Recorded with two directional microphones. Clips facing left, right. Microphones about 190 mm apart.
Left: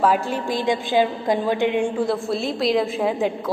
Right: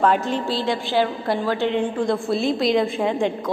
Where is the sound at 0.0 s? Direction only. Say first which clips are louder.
Even; 5° left (ahead or behind).